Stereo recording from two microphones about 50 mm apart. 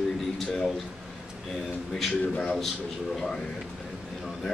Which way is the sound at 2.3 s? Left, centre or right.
Left.